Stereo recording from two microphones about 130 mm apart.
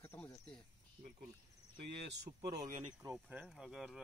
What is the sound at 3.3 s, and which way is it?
Speech, 5° right (ahead or behind).